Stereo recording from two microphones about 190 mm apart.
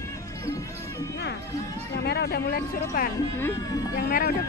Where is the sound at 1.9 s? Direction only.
60° left (ahead or behind).